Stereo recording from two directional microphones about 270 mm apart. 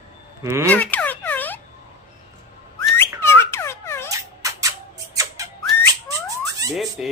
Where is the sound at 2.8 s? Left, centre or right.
Centre.